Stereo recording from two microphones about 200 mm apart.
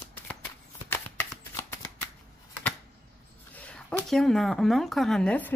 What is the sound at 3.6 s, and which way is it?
Speech, 5° left (ahead or behind).